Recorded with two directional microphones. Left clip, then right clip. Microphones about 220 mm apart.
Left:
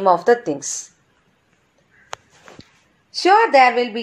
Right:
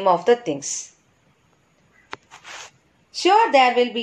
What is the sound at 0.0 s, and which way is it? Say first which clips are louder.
Speech: left 2 dB; 20° left (ahead or behind).